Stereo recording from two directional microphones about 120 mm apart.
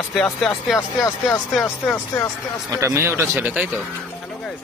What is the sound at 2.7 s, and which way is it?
Speech, 25° right (ahead or behind).